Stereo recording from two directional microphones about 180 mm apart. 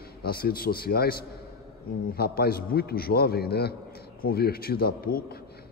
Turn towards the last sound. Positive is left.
turn(degrees=55)  # may be behind; listen again after turning